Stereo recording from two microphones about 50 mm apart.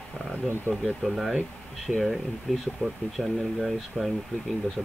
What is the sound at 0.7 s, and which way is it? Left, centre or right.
Speech, left.